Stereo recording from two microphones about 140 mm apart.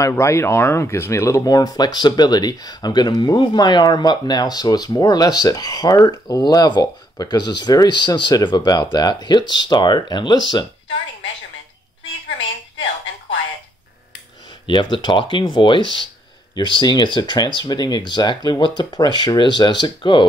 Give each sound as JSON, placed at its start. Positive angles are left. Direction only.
{"t": 0.0, "sound": "speech", "side_deg": 20}
{"t": 14.7, "sound": "speech", "side_deg": 35}